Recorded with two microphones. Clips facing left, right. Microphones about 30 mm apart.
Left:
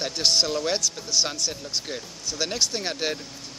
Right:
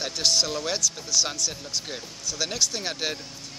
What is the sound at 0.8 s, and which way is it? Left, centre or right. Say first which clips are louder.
Speech: even; centre.